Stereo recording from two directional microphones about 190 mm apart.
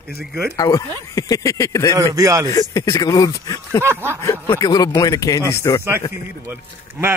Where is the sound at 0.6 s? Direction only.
20° left (ahead or behind).